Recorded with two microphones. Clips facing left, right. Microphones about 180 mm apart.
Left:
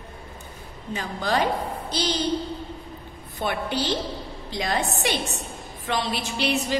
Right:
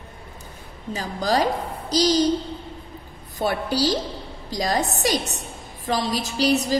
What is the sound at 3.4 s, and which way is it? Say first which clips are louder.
A woman's voice: right 4 dB; 40° right (ahead or behind).